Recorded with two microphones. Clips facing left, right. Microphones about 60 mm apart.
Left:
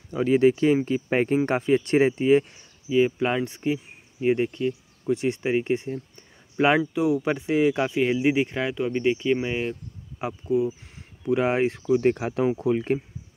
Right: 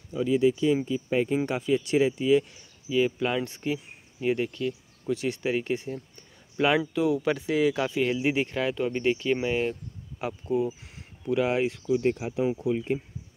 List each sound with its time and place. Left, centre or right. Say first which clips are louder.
0.1 s speech: left 4 dB; left
2.5 s speech: left 4 dB; left
6.9 s speech: left 2 dB; centre
7.3 s speech: left 3 dB; left
8.7 s speech: left 2 dB; centre
10.4 s speech: left 4 dB; left
12.0 s speech: left 4 dB; left